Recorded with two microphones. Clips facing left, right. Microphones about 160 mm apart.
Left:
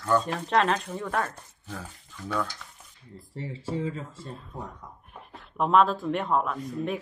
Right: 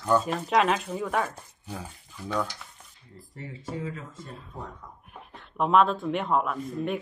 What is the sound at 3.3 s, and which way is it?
Speech, 30° left (ahead or behind).